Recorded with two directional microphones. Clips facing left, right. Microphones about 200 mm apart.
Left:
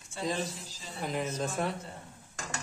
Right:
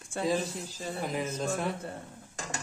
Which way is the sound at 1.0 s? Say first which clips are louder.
Left 1 dB; centre (ahead or behind).